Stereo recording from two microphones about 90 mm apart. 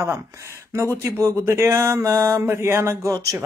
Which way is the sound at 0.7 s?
30° right (ahead or behind).